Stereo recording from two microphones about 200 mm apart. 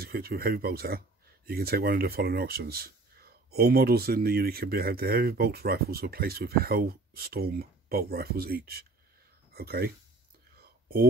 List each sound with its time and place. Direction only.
0.0 s speech: 50° right (ahead or behind)